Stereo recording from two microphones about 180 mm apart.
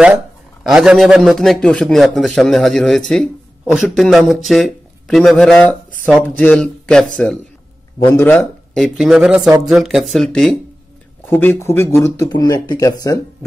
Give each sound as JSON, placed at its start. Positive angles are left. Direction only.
{"t": 0.7, "sound": "a man's voice", "side_deg": -5}
{"t": 8.7, "sound": "a man's voice", "side_deg": 0}